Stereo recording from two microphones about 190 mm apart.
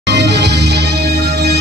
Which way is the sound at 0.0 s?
65° right (ahead or behind).